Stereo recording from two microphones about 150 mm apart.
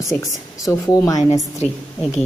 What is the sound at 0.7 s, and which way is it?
Speech, 25° left (ahead or behind).